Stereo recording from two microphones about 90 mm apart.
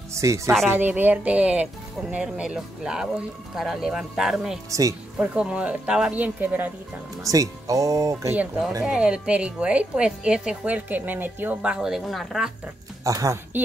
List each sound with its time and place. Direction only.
0.1 s speech: 35° right (ahead or behind)
0.7 s a woman's voice: 20° right (ahead or behind); by 4.6 s 5° right (ahead or behind)
4.6 s speech: 40° right (ahead or behind)
5.2 s a woman's voice: 15° right (ahead or behind)
7.2 s speech: 40° right (ahead or behind)
8.8 s a woman's voice: 10° right (ahead or behind)
11.7 s speech: 5° right (ahead or behind)
13.0 s speech: 40° right (ahead or behind)